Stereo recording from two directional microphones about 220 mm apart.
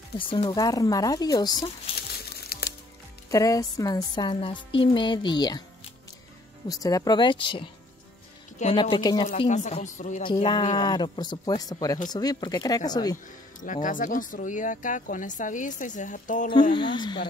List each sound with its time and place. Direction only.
0.3 s speech: 20° left (ahead or behind)
2.1 s crumpling: 45° left (ahead or behind)
3.3 s speech: 15° left (ahead or behind)
6.7 s speech: 15° left (ahead or behind)
9.4 s speech: 30° left (ahead or behind)
10.2 s speech: 20° left (ahead or behind)
13.7 s speech: 35° left (ahead or behind)
16.7 s speech: 20° left (ahead or behind)